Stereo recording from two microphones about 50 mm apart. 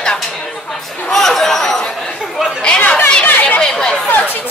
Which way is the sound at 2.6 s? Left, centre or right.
Left.